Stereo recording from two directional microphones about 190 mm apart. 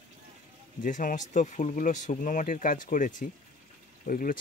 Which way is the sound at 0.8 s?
45° left (ahead or behind).